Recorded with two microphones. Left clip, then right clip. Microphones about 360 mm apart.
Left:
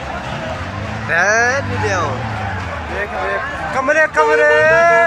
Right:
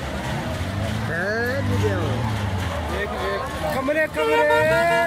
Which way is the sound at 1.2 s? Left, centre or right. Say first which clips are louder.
Left 11 dB; left.